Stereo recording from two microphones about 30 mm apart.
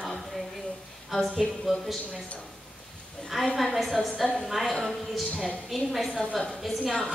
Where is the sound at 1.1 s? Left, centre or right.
Centre.